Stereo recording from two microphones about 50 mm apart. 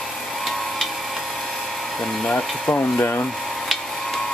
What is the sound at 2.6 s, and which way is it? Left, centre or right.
Speech, left.